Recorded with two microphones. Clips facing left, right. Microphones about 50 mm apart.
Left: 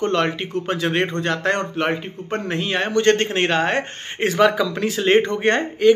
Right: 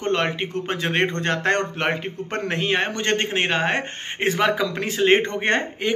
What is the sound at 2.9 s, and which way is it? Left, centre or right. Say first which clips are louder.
Speech: left 5 dB; centre.